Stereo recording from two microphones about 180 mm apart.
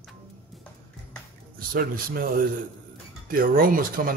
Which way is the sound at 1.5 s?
55° right (ahead or behind).